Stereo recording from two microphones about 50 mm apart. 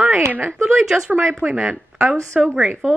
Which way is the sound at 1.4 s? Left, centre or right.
Right.